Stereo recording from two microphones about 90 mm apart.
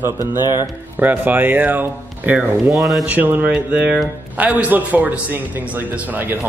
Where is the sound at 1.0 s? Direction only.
20° right (ahead or behind).